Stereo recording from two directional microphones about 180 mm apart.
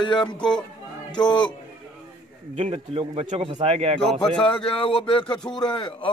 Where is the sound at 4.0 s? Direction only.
Centre (ahead or behind).